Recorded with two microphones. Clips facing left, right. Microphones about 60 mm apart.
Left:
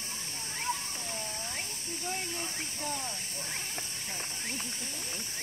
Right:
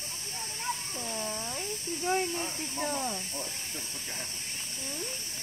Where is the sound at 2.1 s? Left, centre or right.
Right.